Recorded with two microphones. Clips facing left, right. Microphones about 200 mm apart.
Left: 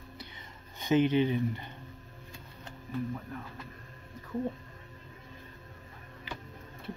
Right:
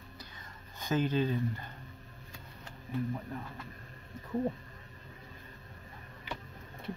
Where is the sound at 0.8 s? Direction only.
20° left (ahead or behind).